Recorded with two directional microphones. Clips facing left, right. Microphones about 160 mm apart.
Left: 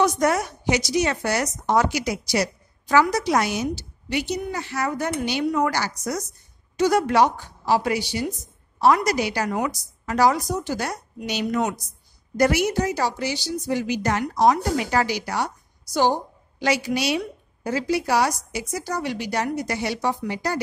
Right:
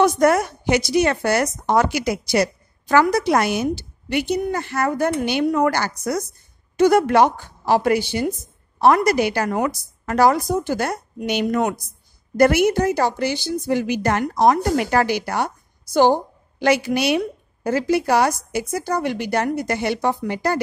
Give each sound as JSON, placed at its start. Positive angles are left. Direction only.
{"t": 0.0, "sound": "a woman's voice", "side_deg": -55}